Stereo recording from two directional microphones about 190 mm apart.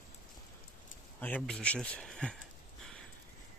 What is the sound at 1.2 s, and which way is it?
Speech, 5° left (ahead or behind).